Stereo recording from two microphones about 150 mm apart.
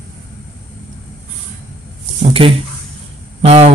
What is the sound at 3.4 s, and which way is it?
Speech, 45° right (ahead or behind).